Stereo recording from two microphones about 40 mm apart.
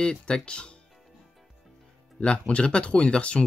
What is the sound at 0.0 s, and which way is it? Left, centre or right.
Speech, left.